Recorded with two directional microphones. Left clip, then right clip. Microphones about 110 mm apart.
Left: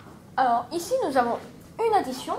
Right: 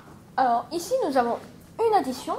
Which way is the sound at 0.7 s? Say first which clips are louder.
Even; 40° left (ahead or behind).